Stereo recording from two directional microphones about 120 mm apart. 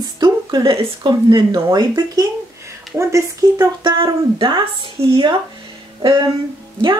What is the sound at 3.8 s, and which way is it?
Speech, 40° right (ahead or behind).